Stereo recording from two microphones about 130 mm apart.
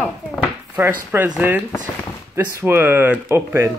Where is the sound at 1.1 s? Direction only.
10° right (ahead or behind).